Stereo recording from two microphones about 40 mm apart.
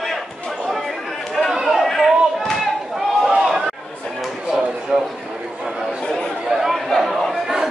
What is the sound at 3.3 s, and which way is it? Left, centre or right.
Chatter, centre.